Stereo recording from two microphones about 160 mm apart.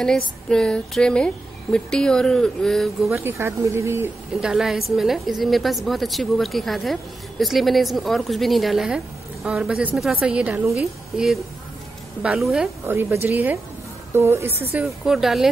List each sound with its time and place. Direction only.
0.0 s a woman's voice: 5° left (ahead or behind)
3.1 s speech: 15° right (ahead or behind)
4.4 s a woman's voice: 5° right (ahead or behind)
12.8 s speech: 15° right (ahead or behind)
15.0 s a woman's voice: centre (ahead or behind)